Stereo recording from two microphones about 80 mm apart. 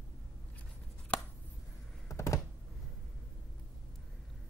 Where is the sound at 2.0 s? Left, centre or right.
Left.